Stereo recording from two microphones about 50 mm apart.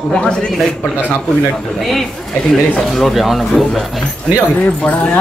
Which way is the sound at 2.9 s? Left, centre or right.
Centre.